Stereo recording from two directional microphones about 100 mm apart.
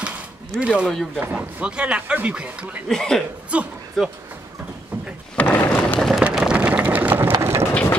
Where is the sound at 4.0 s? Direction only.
Centre (ahead or behind).